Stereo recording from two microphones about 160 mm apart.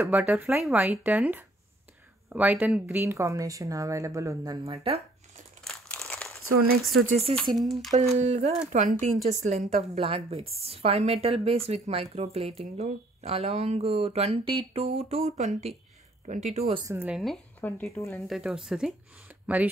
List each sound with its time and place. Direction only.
0.0 s speech: 15° right (ahead or behind)
4.6 s a woman's voice: 35° right (ahead or behind)
5.6 s crumpling: 5° left (ahead or behind)
6.7 s speech: 70° right (ahead or behind)
8.2 s a woman's voice: 40° right (ahead or behind)
16.8 s speech: 15° right (ahead or behind)
17.2 s speech: centre (ahead or behind)
18.2 s speech: centre (ahead or behind)